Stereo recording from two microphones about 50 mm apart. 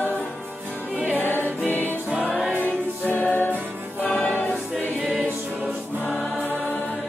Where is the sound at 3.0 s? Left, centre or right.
Left.